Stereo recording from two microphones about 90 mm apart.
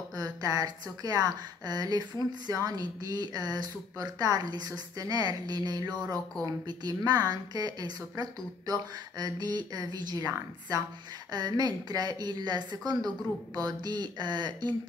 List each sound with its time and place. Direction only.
0.1 s a sound: 45° right (ahead or behind)
1.0 s a woman's voice: 45° right (ahead or behind)
11.3 s a woman's voice: 50° right (ahead or behind)